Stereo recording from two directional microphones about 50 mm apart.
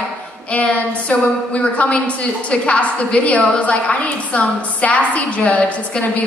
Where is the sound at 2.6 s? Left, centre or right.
Left.